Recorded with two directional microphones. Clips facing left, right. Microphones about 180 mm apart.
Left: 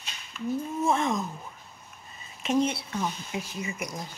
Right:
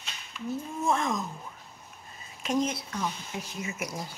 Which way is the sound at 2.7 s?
10° left (ahead or behind).